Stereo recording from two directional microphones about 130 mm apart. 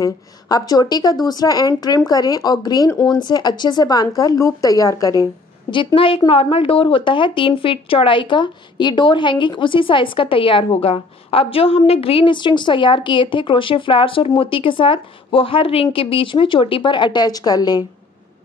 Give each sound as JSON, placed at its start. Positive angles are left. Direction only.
{"t": 0.0, "sound": "speech", "side_deg": 25}
{"t": 5.9, "sound": "a woman's voice", "side_deg": 45}